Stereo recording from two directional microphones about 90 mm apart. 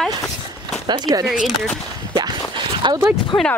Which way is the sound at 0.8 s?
50° right (ahead or behind).